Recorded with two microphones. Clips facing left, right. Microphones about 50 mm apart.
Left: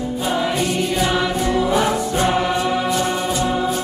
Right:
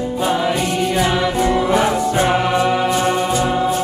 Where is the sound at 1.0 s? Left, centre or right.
Centre.